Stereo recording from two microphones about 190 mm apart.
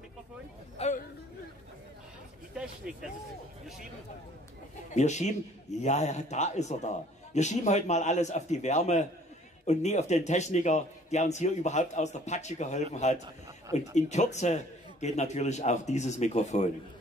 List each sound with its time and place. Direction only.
0.7 s chatter: 40° left (ahead or behind)
2.5 s speech: 5° right (ahead or behind)
4.9 s a man's voice: 35° left (ahead or behind)